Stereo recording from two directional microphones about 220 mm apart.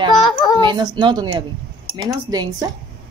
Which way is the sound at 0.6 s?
20° right (ahead or behind).